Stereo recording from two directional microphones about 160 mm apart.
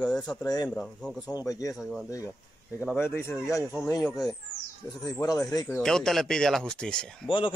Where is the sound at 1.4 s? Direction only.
20° left (ahead or behind).